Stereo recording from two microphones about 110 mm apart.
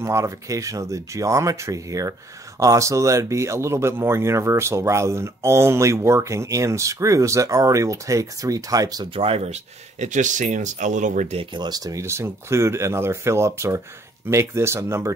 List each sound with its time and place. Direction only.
0.0 s speech: 30° right (ahead or behind)
9.1 s speech: 60° right (ahead or behind); by 11.4 s 85° right
11.5 s speech: 40° right (ahead or behind); by 15.1 s 25° right (ahead or behind)